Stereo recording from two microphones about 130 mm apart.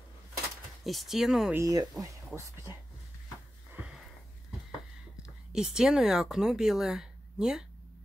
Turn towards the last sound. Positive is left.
turn(degrees=-5)  # may be behind; listen again after turning